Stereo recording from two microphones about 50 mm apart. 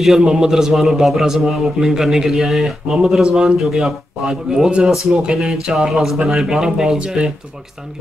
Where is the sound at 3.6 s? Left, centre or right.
Centre.